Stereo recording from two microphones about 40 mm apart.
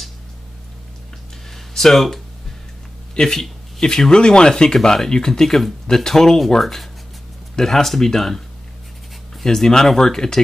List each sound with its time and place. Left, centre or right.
1.5 s a sound: centre
3.2 s speech: centre
9.4 s speech: centre